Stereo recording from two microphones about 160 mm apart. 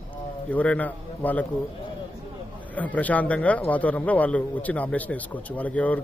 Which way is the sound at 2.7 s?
10° left (ahead or behind).